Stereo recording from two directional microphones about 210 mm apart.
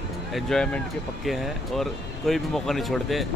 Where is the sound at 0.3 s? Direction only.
Centre (ahead or behind).